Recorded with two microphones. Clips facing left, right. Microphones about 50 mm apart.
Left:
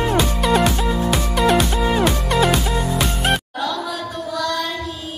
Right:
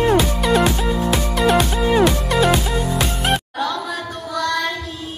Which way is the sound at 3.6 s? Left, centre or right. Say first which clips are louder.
Right 1 dB; right.